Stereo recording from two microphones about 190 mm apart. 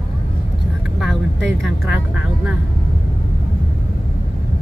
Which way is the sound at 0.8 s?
Centre (ahead or behind).